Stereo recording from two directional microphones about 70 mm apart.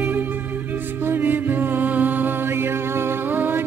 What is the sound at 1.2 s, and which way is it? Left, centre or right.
Music, right.